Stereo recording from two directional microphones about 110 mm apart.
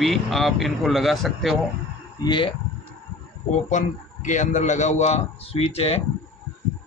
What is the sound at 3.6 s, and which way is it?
A man's voice, 90° left.